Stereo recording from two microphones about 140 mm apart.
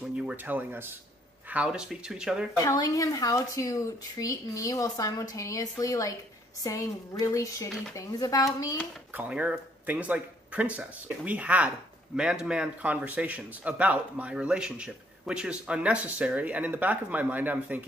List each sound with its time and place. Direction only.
0.2 s a man's voice: 10° right (ahead or behind)
2.5 s speech: 25° left (ahead or behind)
9.1 s a man's voice: 10° right (ahead or behind)